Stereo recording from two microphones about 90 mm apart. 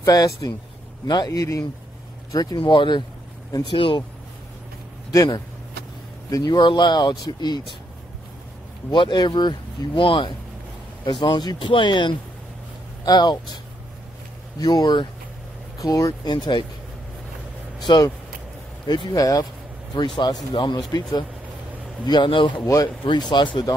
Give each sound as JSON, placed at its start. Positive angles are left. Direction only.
{"t": 0.0, "sound": "speech", "side_deg": 45}
{"t": 2.3, "sound": "speech", "side_deg": 55}
{"t": 3.7, "sound": "speech", "side_deg": 85}
{"t": 5.1, "sound": "speech", "side_deg": 40}
{"t": 6.3, "sound": "speech", "side_deg": 55}
{"t": 8.9, "sound": "speech", "side_deg": 60}
{"t": 11.1, "sound": "speech", "side_deg": 55}
{"t": 14.6, "sound": "speech", "side_deg": 50}
{"t": 16.1, "sound": "speech", "side_deg": 55}
{"t": 17.9, "sound": "speech", "side_deg": 55}
{"t": 19.1, "sound": "speech", "side_deg": 40}
{"t": 20.9, "sound": "speech", "side_deg": 50}